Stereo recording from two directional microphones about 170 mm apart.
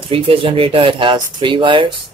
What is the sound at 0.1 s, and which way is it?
Speech, 30° right (ahead or behind).